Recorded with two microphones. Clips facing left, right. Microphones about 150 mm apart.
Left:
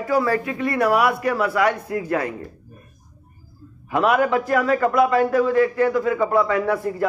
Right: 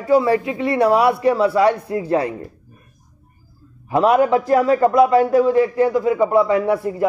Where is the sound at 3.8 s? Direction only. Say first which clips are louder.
Right 4 dB; 30° right (ahead or behind).